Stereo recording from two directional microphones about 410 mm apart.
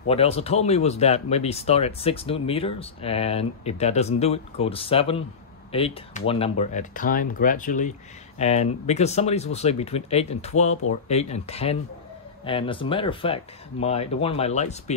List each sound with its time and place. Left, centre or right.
0.1 s speech: centre